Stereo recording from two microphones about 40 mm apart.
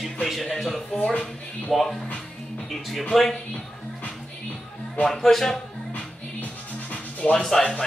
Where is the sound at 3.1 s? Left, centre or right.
Centre.